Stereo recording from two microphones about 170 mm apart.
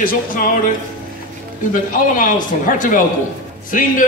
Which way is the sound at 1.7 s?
50° left (ahead or behind).